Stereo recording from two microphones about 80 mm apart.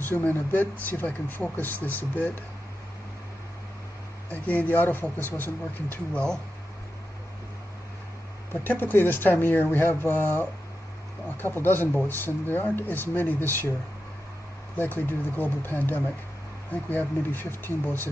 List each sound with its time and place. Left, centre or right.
0.0 s speech: left
4.3 s speech: centre
6.1 s speech: centre
8.6 s speech: left
14.8 s speech: left